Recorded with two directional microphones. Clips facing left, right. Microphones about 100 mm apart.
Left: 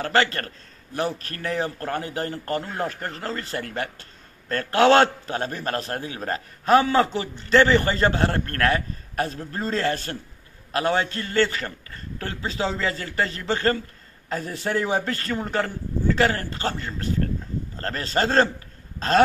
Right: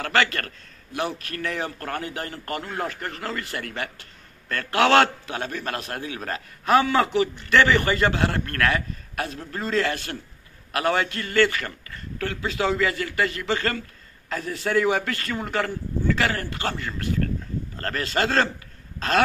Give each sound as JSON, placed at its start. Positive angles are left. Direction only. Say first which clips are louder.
{"t": 0.0, "sound": "a man's voice", "louder": "left 1 dB", "side_deg": 35}